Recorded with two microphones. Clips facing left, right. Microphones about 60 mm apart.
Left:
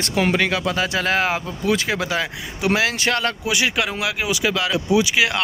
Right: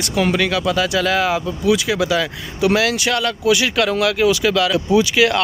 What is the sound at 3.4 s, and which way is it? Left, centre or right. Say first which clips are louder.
Speech: right 5 dB; left.